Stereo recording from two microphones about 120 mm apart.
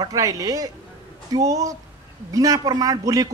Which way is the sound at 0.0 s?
30° right (ahead or behind).